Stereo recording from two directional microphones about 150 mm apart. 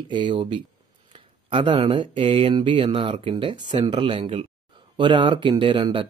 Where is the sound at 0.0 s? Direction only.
30° right (ahead or behind).